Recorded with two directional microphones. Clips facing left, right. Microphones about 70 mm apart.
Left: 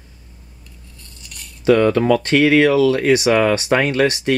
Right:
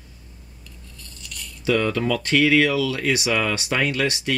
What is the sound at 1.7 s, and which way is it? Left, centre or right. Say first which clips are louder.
Speech: left 8 dB; left.